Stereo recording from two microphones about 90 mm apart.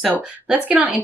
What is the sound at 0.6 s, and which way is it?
Speech, 15° right (ahead or behind).